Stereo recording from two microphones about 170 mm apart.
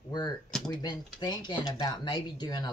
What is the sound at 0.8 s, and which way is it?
Speech, 25° left (ahead or behind).